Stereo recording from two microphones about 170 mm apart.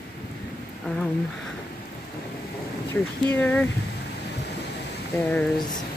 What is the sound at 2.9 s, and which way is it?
Speech, 10° left (ahead or behind).